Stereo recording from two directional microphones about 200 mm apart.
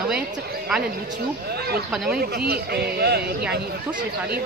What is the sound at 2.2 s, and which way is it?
A man's voice, 50° right (ahead or behind).